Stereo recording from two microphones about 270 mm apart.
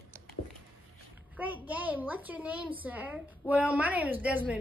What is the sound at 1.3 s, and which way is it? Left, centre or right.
A woman's voice, centre.